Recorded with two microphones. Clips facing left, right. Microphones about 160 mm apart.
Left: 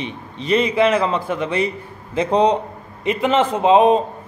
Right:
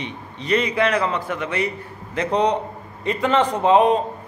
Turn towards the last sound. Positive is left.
turn(degrees=20)  # may be behind; listen again after turning